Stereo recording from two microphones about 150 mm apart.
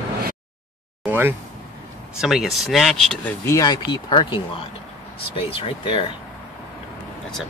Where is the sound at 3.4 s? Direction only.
25° left (ahead or behind).